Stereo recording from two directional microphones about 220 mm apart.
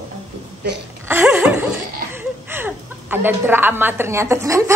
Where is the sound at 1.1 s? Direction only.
10° right (ahead or behind).